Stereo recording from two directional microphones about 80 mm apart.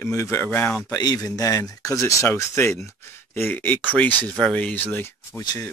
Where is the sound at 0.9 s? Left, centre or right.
Left.